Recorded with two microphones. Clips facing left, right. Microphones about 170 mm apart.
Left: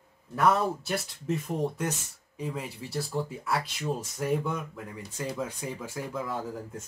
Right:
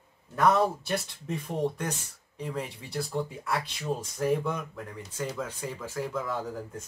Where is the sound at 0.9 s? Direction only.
Centre (ahead or behind).